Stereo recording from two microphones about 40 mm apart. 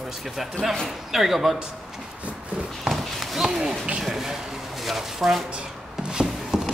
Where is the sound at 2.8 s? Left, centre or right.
Centre.